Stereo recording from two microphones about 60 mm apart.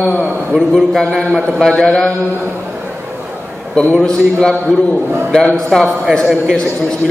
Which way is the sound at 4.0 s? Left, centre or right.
Centre.